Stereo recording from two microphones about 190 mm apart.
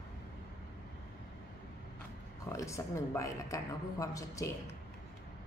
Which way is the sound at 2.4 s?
15° left (ahead or behind).